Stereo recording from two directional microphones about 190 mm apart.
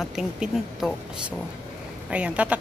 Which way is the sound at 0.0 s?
Centre (ahead or behind).